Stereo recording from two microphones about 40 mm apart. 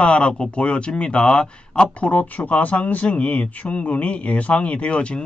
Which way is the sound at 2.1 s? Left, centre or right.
Left.